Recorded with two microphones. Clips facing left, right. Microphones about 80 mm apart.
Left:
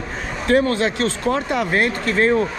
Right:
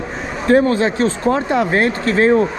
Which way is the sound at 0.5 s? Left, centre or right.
Right.